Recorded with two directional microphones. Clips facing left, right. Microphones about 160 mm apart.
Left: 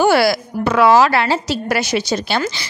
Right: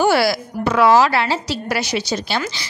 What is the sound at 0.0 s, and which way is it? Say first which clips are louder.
A woman's voice: left 2 dB; 60° left (ahead or behind).